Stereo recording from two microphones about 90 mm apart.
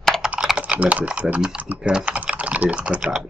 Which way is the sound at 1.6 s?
10° right (ahead or behind).